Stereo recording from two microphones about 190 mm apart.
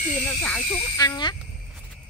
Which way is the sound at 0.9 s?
20° left (ahead or behind).